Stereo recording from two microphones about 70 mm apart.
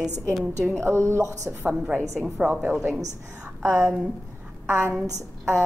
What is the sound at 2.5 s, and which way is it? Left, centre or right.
Speech, right.